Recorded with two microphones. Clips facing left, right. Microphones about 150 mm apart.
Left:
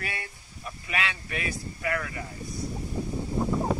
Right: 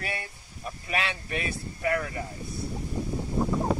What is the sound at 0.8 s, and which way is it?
Speech, 30° right (ahead or behind).